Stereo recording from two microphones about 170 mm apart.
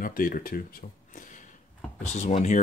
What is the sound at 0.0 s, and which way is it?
Speech, 55° left (ahead or behind).